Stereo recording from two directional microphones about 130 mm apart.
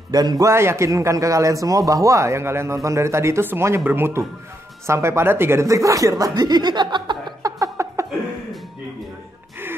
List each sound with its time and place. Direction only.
0.1 s a man's voice: 30° right (ahead or behind)